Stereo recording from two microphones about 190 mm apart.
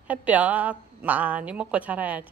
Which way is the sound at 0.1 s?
10° right (ahead or behind).